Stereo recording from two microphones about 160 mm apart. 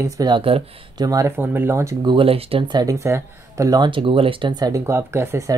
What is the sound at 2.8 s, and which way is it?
Speech, 20° right (ahead or behind).